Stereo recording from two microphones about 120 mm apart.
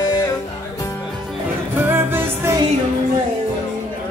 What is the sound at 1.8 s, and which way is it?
Music, 15° right (ahead or behind).